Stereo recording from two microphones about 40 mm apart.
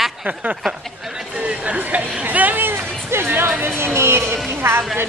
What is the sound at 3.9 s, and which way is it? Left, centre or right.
Speech, right.